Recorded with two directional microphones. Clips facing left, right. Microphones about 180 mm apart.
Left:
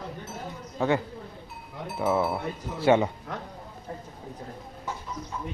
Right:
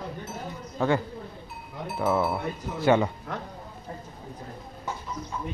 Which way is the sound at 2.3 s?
30° left (ahead or behind).